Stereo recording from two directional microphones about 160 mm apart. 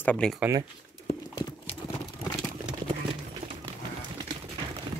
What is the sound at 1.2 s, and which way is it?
Clip-clop, 25° left (ahead or behind).